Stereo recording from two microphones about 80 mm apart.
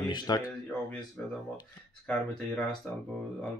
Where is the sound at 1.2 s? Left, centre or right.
Centre.